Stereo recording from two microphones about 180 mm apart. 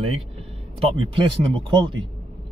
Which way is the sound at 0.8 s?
30° right (ahead or behind).